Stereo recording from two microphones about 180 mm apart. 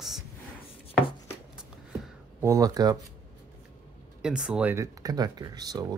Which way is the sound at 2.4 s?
20° right (ahead or behind).